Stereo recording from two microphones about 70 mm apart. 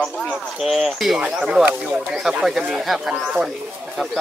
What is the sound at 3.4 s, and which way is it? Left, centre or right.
Speech, centre.